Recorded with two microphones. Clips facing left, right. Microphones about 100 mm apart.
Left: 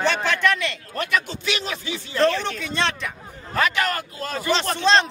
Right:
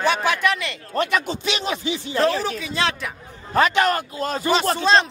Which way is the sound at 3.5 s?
25° right (ahead or behind).